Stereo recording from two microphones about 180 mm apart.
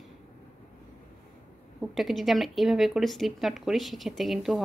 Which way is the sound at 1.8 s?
Centre (ahead or behind).